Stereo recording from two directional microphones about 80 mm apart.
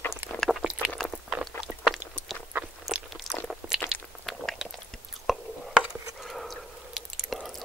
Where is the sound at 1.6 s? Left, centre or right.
Centre.